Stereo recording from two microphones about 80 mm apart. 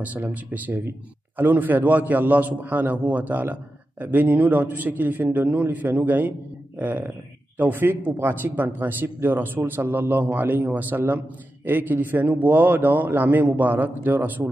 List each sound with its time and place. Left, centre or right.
0.0 s speech: centre